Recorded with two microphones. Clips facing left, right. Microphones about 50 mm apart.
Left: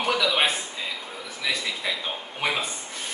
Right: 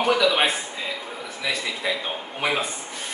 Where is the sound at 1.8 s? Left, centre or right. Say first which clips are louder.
Right 4 dB; centre.